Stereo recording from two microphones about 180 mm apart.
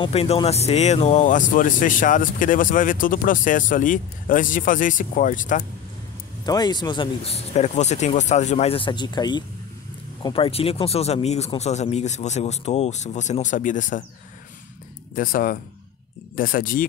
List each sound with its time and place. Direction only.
0.0 s speech: 35° left (ahead or behind)
6.4 s speech: 20° left (ahead or behind); by 14.0 s 45° left (ahead or behind)
15.1 s speech: 50° left (ahead or behind)